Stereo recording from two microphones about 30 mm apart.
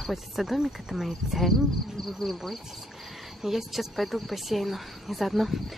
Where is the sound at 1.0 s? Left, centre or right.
Centre.